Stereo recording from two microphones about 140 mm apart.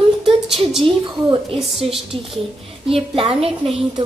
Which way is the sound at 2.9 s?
45° right (ahead or behind).